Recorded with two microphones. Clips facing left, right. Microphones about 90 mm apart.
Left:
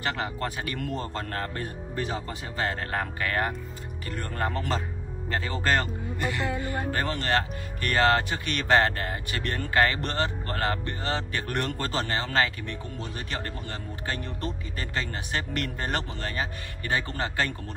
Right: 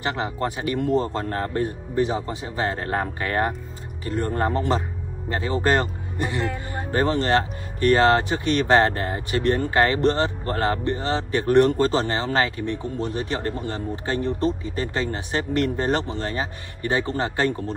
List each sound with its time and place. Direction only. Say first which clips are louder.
0.0 s speech: right 4 dB; 25° right (ahead or behind)